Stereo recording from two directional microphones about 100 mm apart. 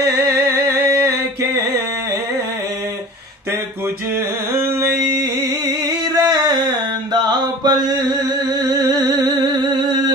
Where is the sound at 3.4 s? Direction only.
25° right (ahead or behind).